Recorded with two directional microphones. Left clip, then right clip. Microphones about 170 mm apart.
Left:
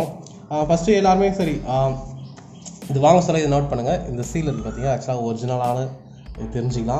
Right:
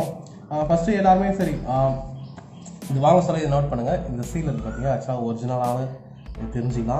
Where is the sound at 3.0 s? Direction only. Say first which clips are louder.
Left 3 dB; 25° left (ahead or behind).